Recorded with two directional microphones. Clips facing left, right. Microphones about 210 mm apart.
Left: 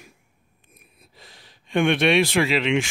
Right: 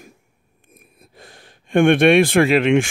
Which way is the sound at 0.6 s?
50° right (ahead or behind).